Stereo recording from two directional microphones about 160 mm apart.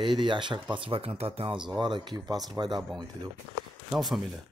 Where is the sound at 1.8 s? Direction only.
30° right (ahead or behind).